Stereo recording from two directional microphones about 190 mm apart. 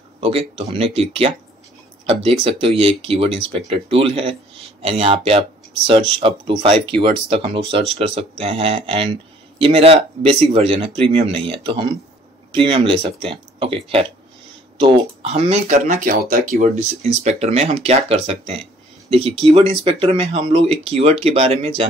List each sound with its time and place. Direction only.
0.2 s speech: 30° right (ahead or behind)